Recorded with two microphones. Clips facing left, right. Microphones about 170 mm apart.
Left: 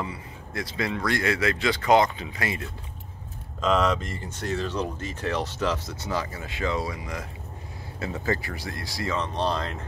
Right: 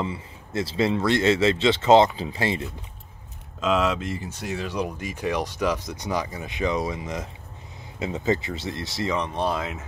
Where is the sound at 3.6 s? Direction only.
5° right (ahead or behind).